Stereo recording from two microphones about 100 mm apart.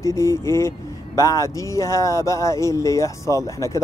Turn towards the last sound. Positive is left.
turn(degrees=30)  # may be behind; listen again after turning